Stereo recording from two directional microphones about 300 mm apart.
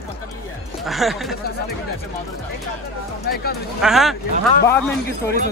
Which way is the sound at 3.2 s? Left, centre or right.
Left.